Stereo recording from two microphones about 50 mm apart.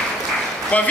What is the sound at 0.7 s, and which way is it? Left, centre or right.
Speech, left.